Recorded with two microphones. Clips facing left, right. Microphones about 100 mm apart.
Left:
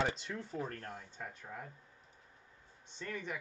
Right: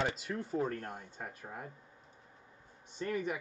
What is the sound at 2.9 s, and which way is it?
Speech, 10° right (ahead or behind).